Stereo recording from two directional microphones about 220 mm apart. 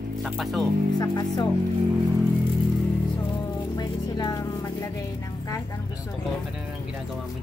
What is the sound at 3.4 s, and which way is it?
Music, 20° left (ahead or behind).